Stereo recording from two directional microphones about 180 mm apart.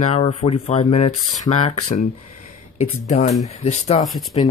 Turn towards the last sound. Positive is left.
turn(degrees=0)  # may be behind; listen again after turning